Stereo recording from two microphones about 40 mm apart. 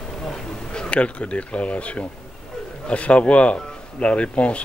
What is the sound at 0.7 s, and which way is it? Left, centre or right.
Speech, left.